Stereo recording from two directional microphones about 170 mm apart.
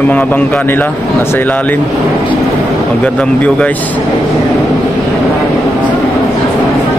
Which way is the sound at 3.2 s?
5° left (ahead or behind).